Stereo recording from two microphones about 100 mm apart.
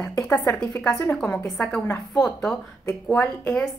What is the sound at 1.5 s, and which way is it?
Speech, 15° left (ahead or behind).